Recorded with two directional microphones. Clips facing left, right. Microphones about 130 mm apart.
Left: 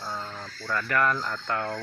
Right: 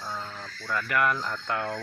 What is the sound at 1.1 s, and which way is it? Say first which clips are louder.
Speech: left 1 dB; centre (ahead or behind).